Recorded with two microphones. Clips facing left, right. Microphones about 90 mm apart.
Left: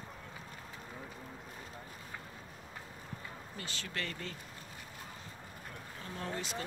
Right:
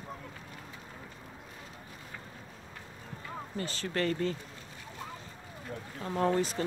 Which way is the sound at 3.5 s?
40° right (ahead or behind).